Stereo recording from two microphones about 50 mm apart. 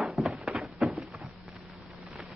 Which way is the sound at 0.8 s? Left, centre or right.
Centre.